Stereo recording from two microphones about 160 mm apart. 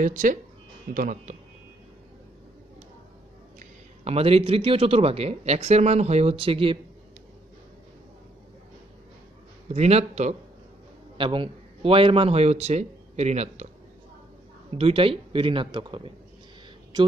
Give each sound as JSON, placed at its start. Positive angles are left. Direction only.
{"t": 0.0, "sound": "speech", "side_deg": -55}
{"t": 3.5, "sound": "a man's voice", "side_deg": -40}
{"t": 9.7, "sound": "a man's voice", "side_deg": -40}
{"t": 14.7, "sound": "a man's voice", "side_deg": -35}